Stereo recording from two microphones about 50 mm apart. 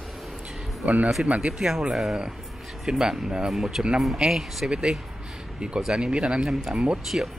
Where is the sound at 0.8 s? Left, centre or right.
Right.